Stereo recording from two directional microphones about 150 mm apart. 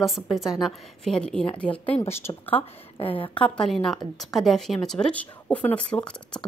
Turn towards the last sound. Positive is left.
turn(degrees=5)  # may be behind; listen again after turning